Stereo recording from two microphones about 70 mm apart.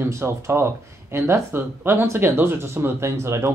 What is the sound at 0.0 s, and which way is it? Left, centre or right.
Speech, right.